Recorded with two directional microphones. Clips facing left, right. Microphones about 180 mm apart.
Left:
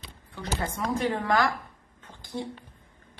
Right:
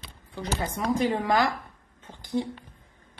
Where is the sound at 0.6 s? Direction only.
20° right (ahead or behind).